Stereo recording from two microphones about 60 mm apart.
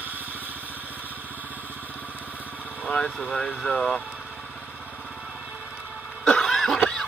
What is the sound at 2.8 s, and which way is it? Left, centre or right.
Speech, centre.